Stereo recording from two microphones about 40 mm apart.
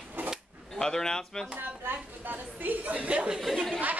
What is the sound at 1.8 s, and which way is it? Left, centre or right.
A woman's voice, right.